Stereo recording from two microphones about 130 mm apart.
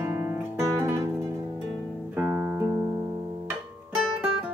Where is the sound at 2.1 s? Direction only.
20° right (ahead or behind).